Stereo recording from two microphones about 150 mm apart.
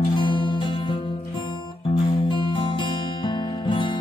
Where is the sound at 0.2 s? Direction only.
30° left (ahead or behind).